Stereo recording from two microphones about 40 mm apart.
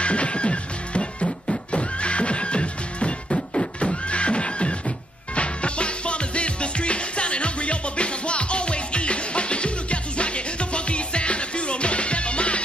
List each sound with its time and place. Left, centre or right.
0.0 s music: left